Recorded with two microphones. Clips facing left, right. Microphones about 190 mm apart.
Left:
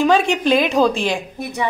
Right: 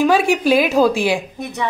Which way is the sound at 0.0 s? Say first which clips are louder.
Right 1 dB; 5° right (ahead or behind).